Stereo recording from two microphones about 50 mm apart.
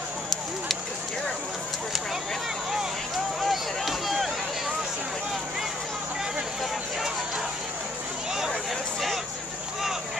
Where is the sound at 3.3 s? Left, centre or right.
Centre.